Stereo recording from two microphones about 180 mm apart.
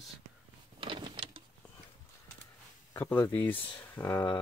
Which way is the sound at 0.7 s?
25° right (ahead or behind).